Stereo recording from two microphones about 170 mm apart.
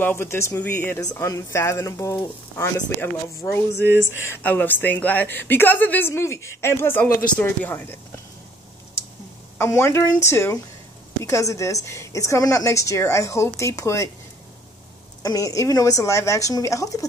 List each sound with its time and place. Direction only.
0.0 s a woman's voice: 15° left (ahead or behind)
3.8 s speech: 15° right (ahead or behind)
4.3 s a woman's voice: 10° left (ahead or behind)
9.6 s a woman's voice: 15° left (ahead or behind)
15.2 s speech: 20° left (ahead or behind)